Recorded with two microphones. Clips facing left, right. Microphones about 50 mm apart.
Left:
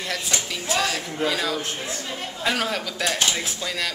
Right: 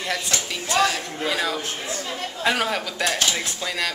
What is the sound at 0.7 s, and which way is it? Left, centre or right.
A woman's voice, centre.